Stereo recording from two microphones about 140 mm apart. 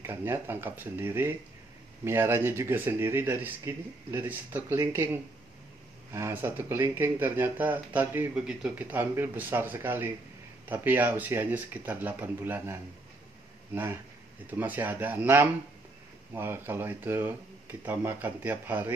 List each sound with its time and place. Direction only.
0.0 s speech: 15° right (ahead or behind)
14.5 s speech: 15° right (ahead or behind)